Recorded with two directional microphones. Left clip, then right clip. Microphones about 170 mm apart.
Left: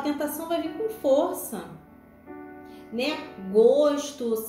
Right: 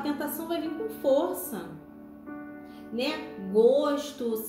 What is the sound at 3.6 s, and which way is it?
Speech, 5° right (ahead or behind).